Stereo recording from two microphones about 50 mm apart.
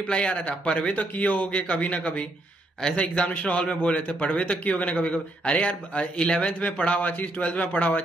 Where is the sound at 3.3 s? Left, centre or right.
Left.